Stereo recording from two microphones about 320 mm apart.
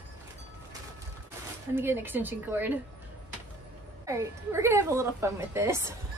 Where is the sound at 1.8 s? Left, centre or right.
Centre.